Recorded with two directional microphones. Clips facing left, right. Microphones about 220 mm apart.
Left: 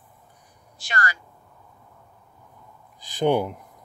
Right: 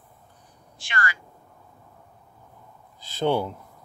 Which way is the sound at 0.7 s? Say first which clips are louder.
Left 1 dB; 40° left (ahead or behind).